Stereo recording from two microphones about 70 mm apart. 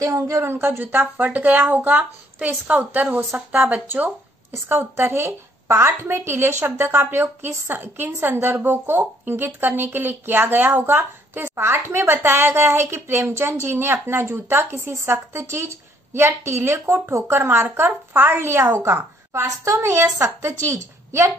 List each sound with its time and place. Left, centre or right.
0.4 s speech: right